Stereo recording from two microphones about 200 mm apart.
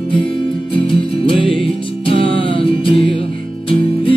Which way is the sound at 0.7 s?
25° left (ahead or behind).